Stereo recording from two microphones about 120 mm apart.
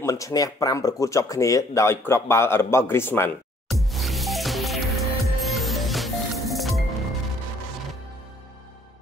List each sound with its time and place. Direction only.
0.0 s speech: 25° left (ahead or behind)
3.9 s music: centre (ahead or behind)